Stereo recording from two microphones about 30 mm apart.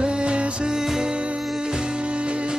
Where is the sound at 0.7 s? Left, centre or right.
Centre.